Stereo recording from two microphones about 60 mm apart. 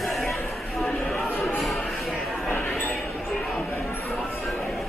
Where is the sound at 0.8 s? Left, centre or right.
Centre.